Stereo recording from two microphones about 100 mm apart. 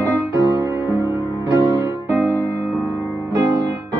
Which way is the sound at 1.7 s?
25° right (ahead or behind).